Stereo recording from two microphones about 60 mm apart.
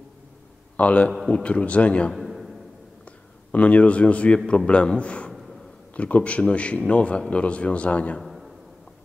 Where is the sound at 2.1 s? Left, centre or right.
Centre.